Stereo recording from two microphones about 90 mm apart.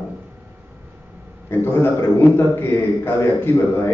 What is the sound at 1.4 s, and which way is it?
A man's voice, 25° left (ahead or behind).